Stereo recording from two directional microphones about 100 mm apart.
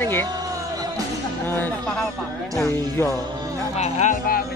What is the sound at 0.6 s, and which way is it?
Music, 35° right (ahead or behind).